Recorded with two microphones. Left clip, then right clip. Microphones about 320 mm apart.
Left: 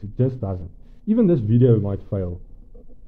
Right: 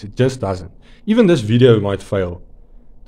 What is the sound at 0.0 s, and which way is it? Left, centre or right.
A man's voice, centre.